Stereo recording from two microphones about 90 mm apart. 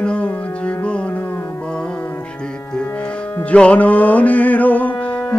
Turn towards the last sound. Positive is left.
turn(degrees=15)  # may be behind; listen again after turning